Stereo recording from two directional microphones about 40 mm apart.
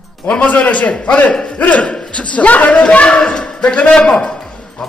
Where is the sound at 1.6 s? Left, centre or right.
Left.